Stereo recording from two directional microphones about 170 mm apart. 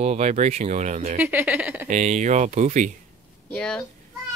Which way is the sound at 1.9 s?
45° right (ahead or behind).